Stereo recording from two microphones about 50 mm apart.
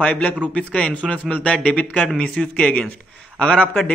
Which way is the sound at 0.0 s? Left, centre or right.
Left.